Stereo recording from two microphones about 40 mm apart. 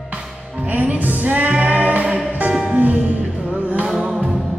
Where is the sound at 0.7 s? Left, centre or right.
Right.